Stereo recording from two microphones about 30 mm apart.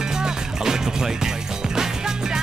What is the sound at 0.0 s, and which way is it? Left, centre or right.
Music, right.